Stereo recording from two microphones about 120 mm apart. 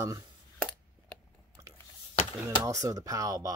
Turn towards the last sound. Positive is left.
turn(degrees=-30)  # may be behind; listen again after turning